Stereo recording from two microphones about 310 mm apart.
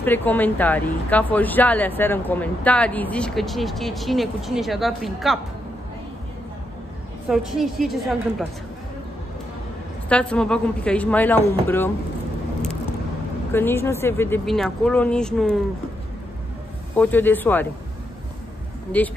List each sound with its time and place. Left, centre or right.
0.0 s speech: centre
7.2 s speech: centre
10.0 s speech: centre
13.5 s speech: centre
16.9 s speech: centre
18.9 s speech: centre